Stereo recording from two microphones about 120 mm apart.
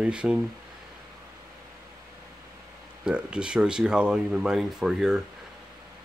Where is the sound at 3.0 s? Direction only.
10° right (ahead or behind).